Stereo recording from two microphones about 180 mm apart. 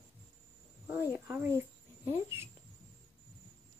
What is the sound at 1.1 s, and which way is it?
Speech, 10° right (ahead or behind).